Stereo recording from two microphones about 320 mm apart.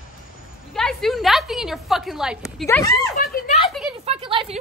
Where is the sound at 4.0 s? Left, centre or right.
Centre.